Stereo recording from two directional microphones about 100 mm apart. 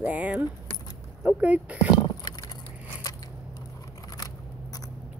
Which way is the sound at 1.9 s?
45° left (ahead or behind).